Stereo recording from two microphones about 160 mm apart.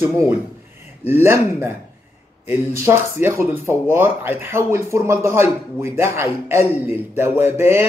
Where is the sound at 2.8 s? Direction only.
15° right (ahead or behind).